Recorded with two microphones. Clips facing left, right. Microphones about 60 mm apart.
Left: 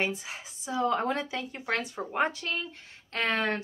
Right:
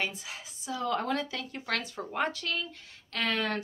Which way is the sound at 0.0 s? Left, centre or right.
Left.